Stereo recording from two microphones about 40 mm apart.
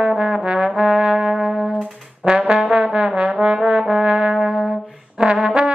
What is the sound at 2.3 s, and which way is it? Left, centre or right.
Trombone, right.